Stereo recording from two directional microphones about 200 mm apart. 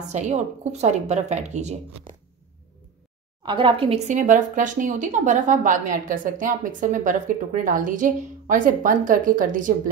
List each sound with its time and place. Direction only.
0.0 s speech: 35° right (ahead or behind)
3.4 s speech: 25° right (ahead or behind); by 9.8 s 40° right (ahead or behind)